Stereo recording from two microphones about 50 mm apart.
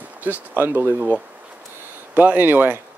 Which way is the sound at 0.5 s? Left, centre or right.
Right.